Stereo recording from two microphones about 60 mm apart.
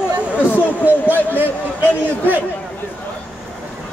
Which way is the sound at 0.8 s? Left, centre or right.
Left.